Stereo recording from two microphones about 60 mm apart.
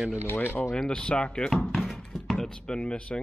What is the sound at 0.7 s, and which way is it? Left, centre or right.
Speech, centre.